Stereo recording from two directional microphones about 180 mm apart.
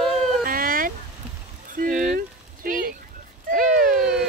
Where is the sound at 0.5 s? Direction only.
50° right (ahead or behind).